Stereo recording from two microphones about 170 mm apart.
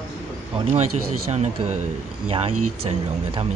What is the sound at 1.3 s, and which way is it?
Speech, 40° right (ahead or behind).